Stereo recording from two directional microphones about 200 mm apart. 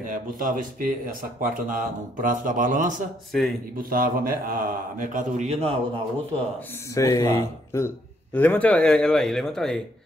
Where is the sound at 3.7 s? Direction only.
45° right (ahead or behind).